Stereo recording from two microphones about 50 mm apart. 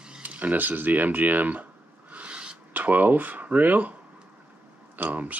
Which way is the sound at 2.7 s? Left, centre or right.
Right.